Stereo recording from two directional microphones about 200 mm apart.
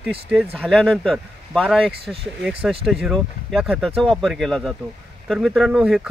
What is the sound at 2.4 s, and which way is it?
Speech, 5° right (ahead or behind).